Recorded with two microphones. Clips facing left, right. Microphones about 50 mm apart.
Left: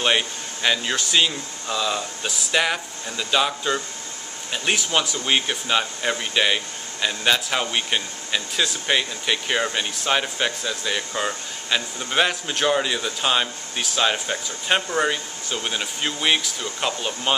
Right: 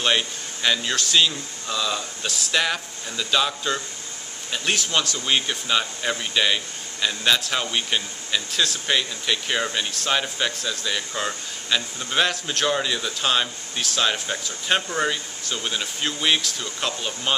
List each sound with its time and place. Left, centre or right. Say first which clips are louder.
0.0 s speech: left 1 dB; centre